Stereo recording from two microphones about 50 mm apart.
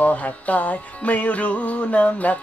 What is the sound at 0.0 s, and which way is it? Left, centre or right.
Music, left.